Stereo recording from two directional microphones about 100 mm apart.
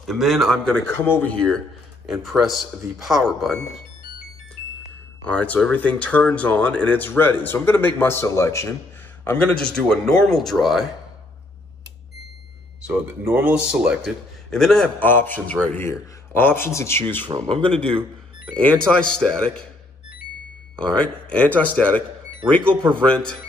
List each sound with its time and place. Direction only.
0.0 s speech: centre (ahead or behind)
1.0 s speech: 20° left (ahead or behind)
2.0 s speech: 5° right (ahead or behind)
5.2 s speech: 15° left (ahead or behind); by 8.7 s 30° left (ahead or behind)
9.2 s speech: 10° left (ahead or behind)
12.8 s speech: 15° right (ahead or behind)
14.5 s speech: 5° left (ahead or behind)
15.0 s speech: 20° left (ahead or behind)
20.7 s speech: 10° left (ahead or behind)
23.0 s speech: 10° left (ahead or behind)